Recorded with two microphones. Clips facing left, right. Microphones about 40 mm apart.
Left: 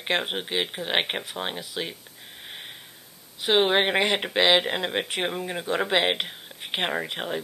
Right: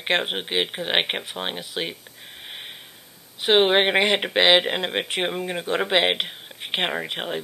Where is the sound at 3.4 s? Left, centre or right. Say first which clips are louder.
Right 3 dB; right.